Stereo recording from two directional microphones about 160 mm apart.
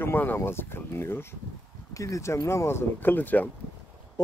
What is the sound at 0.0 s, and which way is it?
Speech, 15° left (ahead or behind).